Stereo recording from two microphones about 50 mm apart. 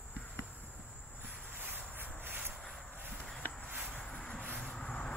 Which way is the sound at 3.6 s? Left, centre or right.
Right.